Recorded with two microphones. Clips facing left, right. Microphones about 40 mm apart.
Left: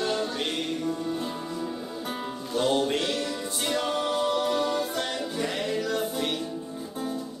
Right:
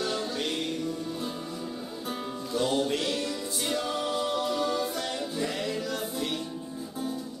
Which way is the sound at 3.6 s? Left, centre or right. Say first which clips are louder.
Left 3 dB; left.